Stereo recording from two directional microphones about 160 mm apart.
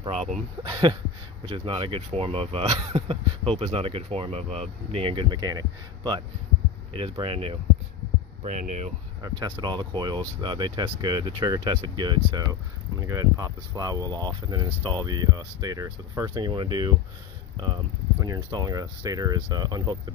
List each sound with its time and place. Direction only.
0.0 s speech: 40° right (ahead or behind)
8.4 s speech: 50° right (ahead or behind)
9.2 s speech: 25° right (ahead or behind)